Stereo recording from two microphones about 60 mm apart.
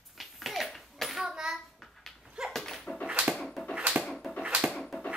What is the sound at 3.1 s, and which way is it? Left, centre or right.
Dog, centre.